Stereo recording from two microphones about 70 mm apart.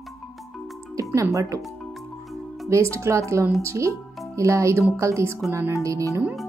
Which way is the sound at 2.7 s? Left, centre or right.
Right.